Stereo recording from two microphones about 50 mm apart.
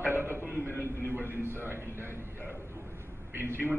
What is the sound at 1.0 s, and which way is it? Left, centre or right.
A man's voice, right.